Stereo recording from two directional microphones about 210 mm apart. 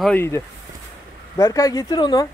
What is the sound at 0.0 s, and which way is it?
Speech, 10° left (ahead or behind).